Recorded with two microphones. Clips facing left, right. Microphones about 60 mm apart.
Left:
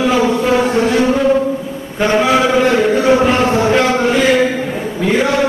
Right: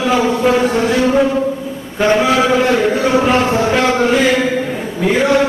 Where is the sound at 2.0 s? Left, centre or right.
Centre.